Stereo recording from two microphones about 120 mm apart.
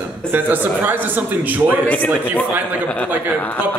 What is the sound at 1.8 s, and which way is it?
Speech, 15° left (ahead or behind).